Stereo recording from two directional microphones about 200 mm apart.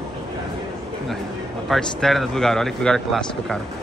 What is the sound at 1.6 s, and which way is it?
Speech, centre (ahead or behind).